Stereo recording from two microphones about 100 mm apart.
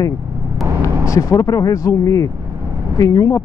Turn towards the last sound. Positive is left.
turn(degrees=35)  # may be behind; listen again after turning